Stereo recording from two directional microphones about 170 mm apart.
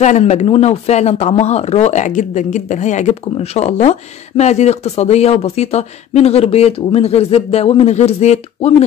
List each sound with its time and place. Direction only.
0.0 s speech: 45° left (ahead or behind)